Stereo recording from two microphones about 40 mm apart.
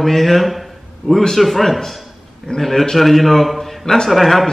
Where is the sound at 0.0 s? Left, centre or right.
Centre.